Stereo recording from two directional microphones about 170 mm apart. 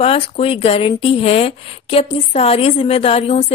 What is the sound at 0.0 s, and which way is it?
A woman's voice, 35° left (ahead or behind).